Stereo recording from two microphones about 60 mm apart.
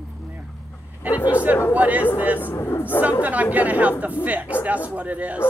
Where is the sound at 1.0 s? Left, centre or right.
Right.